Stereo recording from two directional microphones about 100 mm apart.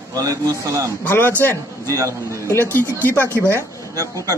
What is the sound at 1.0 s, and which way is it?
Speech, 20° left (ahead or behind).